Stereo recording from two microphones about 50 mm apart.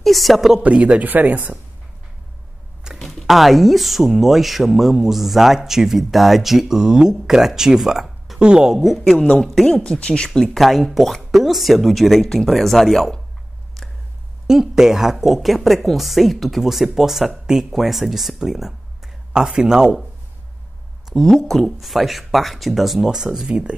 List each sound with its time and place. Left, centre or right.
0.0 s speech: centre
0.6 s speech: right
2.9 s a sound: centre
3.2 s speech: centre
8.4 s speech: centre
8.7 s speech: centre
9.9 s speech: left
10.6 s speech: centre
14.5 s speech: centre
21.1 s speech: centre